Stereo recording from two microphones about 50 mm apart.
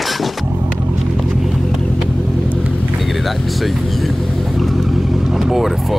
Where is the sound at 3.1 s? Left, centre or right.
Centre.